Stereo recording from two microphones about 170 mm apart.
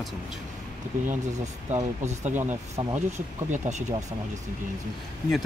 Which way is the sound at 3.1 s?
40° right (ahead or behind).